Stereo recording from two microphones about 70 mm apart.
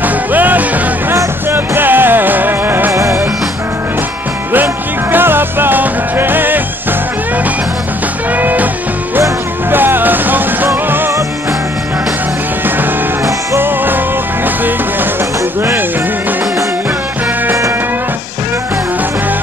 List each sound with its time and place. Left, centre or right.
0.0 s music: right
2.9 s music: right
5.1 s music: right
8.4 s music: right
9.7 s music: right
13.6 s music: right